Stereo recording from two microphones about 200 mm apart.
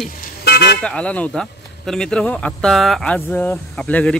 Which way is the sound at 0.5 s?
55° left (ahead or behind).